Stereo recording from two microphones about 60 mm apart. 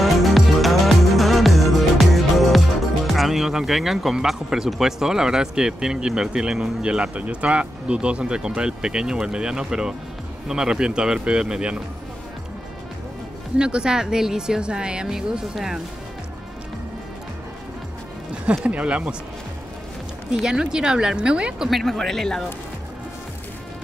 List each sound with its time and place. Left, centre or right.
0.0 s music: centre
3.1 s speech: centre
13.6 s speech: centre
18.5 s speech: right
20.4 s speech: centre
21.6 s speech: centre